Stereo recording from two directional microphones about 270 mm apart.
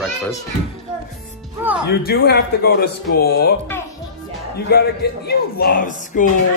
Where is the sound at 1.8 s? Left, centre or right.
Left.